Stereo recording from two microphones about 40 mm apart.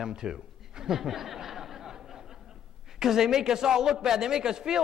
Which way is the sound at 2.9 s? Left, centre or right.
Centre.